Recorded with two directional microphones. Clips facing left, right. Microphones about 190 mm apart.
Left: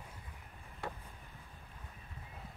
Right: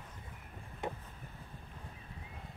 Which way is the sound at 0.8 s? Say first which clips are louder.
Right 4 dB; 20° right (ahead or behind).